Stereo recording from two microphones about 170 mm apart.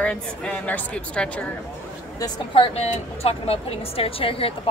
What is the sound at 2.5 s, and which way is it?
Speech, 35° left (ahead or behind).